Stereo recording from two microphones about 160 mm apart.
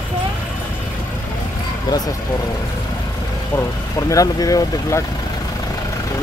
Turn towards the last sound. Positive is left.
turn(degrees=20)  # may be behind; listen again after turning